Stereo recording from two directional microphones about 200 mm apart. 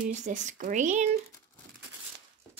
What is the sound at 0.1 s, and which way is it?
Speech, 40° right (ahead or behind).